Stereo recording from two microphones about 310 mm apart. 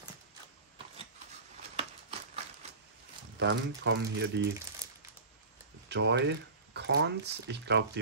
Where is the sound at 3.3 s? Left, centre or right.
Right.